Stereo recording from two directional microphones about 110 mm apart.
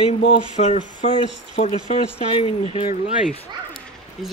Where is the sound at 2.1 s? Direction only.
60° left (ahead or behind).